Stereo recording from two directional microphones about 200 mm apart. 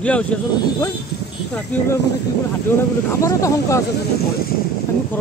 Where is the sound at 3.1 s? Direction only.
15° left (ahead or behind).